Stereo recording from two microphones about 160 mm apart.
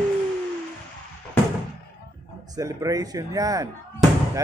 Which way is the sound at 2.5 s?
20° right (ahead or behind).